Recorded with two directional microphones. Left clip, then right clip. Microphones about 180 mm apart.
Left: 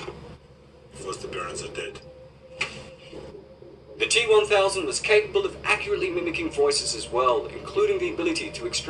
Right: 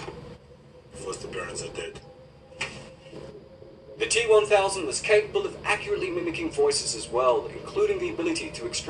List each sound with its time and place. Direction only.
0.9 s speech: 30° left (ahead or behind)
4.0 s speech: 30° left (ahead or behind)